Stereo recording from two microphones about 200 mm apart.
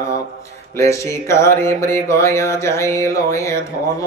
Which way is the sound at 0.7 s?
15° left (ahead or behind).